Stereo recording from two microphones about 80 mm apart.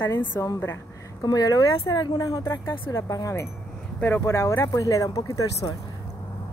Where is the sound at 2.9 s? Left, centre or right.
Left.